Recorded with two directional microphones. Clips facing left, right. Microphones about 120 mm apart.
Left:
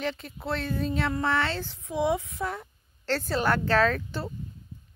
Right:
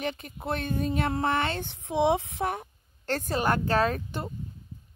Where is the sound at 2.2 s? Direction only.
70° right (ahead or behind).